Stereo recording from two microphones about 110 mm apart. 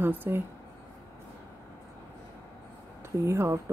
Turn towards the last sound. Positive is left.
turn(degrees=-25)  # may be behind; listen again after turning